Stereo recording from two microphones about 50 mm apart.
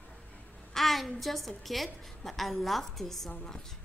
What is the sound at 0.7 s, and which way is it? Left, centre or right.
A woman's voice, centre.